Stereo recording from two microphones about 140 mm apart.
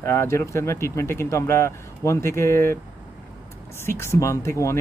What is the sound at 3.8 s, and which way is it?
Speech, 20° left (ahead or behind).